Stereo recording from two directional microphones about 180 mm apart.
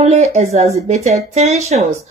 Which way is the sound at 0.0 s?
40° right (ahead or behind).